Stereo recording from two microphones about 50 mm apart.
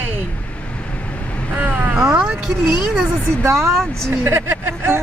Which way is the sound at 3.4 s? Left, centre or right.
Right.